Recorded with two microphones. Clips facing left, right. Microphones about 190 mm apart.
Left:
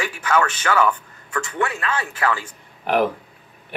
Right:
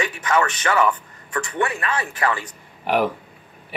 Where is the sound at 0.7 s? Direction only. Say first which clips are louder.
Even; 10° right (ahead or behind).